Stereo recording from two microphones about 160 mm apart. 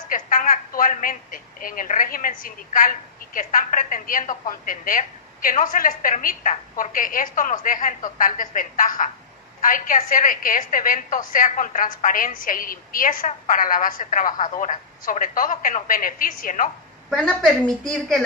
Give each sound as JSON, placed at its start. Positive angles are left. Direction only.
{"t": 0.1, "sound": "a woman's voice", "side_deg": 55}
{"t": 17.1, "sound": "a woman's voice", "side_deg": 5}